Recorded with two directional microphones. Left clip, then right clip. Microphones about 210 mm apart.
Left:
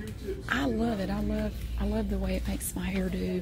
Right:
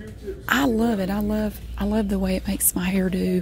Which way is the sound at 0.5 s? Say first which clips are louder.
Right 9 dB; 45° right (ahead or behind).